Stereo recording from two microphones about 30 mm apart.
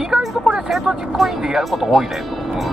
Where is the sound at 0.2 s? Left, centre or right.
Centre.